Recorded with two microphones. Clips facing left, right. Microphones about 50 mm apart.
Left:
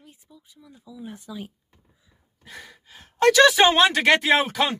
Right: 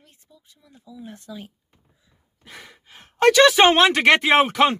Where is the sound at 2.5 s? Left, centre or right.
Right.